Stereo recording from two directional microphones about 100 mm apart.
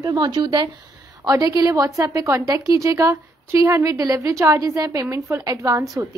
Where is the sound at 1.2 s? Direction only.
35° right (ahead or behind).